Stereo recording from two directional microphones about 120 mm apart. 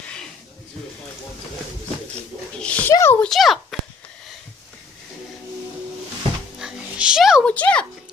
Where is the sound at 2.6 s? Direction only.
10° left (ahead or behind).